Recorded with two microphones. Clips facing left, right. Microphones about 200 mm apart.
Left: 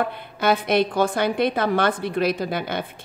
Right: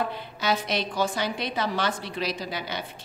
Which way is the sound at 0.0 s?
55° left (ahead or behind).